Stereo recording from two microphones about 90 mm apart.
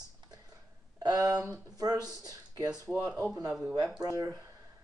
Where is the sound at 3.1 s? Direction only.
25° right (ahead or behind).